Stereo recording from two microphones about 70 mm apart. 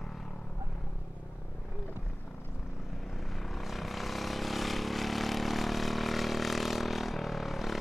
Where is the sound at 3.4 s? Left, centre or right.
Centre.